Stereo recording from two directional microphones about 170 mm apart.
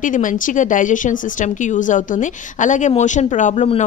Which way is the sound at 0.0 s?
50° left (ahead or behind).